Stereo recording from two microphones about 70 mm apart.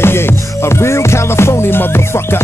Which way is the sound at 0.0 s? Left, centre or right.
Left.